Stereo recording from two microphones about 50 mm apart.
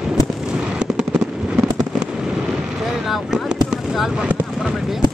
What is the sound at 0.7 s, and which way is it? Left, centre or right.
Fireworks, centre.